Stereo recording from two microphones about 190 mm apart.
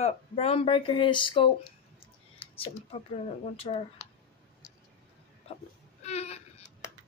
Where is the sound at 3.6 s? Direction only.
30° left (ahead or behind).